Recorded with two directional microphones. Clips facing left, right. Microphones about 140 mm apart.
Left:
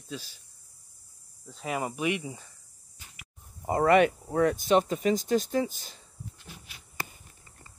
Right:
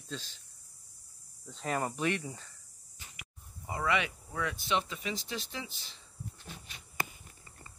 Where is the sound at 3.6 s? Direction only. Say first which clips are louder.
Left 11 dB; 50° left (ahead or behind).